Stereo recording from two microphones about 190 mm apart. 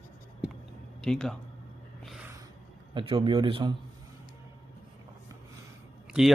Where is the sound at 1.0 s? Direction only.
5° left (ahead or behind).